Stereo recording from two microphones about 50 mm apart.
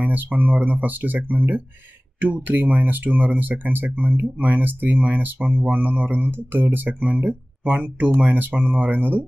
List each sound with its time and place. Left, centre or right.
0.0 s speech: right